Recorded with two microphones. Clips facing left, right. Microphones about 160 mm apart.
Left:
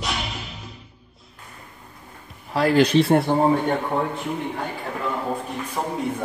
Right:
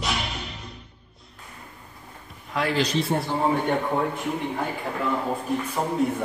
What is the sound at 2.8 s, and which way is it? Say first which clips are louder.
Speech: left 8 dB; 65° left (ahead or behind).